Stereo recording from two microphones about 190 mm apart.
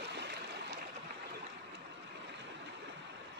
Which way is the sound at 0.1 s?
65° right (ahead or behind).